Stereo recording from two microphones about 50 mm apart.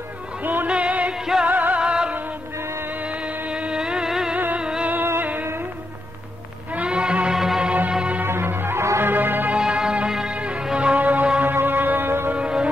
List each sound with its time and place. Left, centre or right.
0.4 s music: right
0.7 s music: right
1.1 s music: centre
1.5 s music: right
1.8 s music: centre
4.8 s music: right
6.7 s music: right
8.3 s music: right
9.6 s music: centre
11.0 s music: right
12.3 s music: right